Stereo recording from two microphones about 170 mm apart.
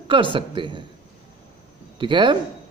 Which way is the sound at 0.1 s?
30° right (ahead or behind).